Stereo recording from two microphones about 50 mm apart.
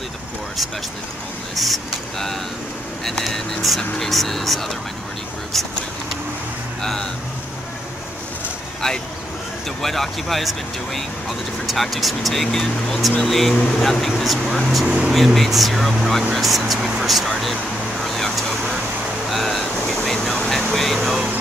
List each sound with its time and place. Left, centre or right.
1.5 s speech: centre
6.8 s speech: centre
9.8 s speech: centre
13.6 s speech: centre
13.8 s speech: centre
14.9 s speech: centre
15.1 s speech: centre
18.0 s vehicle: centre
19.3 s boat: centre
20.1 s air conditioning: centre